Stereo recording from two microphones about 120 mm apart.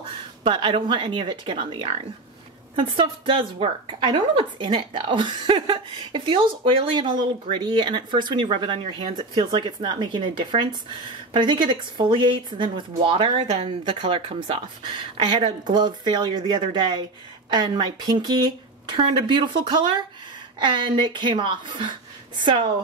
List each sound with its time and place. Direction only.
0.4 s speech: 45° right (ahead or behind)